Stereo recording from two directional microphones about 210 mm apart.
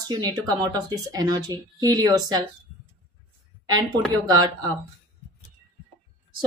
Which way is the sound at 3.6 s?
20° right (ahead or behind).